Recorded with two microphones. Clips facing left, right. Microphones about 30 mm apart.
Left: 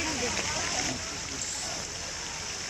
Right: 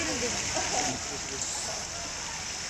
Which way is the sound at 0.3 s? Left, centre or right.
Left.